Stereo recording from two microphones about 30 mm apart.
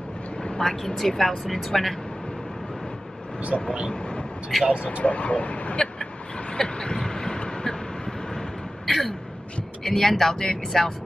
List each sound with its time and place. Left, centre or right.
0.6 s speech: centre
3.5 s speech: centre
3.9 s vehicle: left
5.0 s speech: left
5.8 s vehicle: left
8.8 s a sound: centre
9.8 s speech: centre